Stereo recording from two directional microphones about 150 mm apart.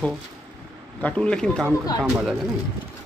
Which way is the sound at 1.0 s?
10° left (ahead or behind).